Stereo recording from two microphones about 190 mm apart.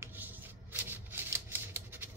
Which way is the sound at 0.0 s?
10° right (ahead or behind).